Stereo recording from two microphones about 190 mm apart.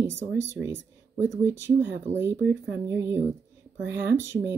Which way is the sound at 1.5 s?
70° right (ahead or behind).